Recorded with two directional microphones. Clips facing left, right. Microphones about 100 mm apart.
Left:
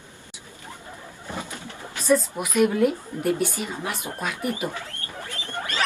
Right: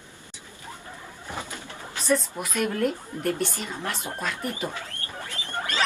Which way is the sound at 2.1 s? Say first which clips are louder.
Left 4 dB; 5° left (ahead or behind).